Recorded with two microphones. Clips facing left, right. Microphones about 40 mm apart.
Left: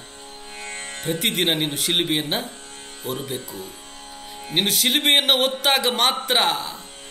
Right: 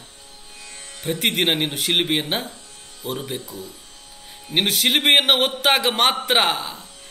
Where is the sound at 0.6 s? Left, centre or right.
Left.